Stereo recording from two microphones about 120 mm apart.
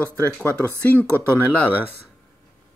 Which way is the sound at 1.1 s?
15° left (ahead or behind).